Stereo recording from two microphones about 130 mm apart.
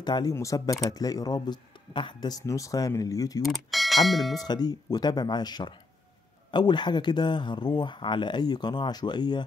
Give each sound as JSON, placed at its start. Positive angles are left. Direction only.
{"t": 0.0, "sound": "speech", "side_deg": 30}
{"t": 3.4, "sound": "speech", "side_deg": 0}
{"t": 4.4, "sound": "speech", "side_deg": 30}